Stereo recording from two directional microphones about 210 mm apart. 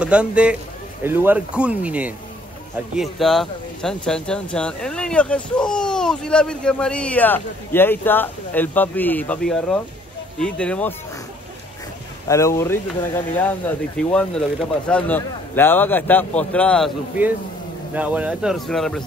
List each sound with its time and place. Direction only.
0.0 s speech: 5° right (ahead or behind)
12.3 s speech: 15° left (ahead or behind)
17.9 s speech: 5° right (ahead or behind)